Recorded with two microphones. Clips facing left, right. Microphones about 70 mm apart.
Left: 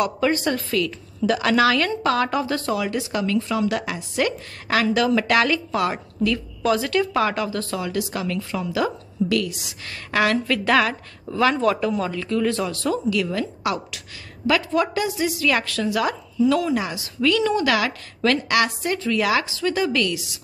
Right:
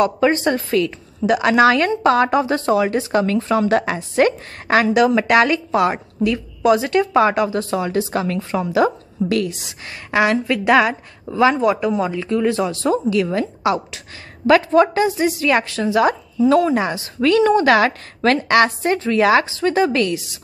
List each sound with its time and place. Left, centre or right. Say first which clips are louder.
0.0 s a woman's voice: right 5 dB; right
10.1 s a woman's voice: right 3 dB; centre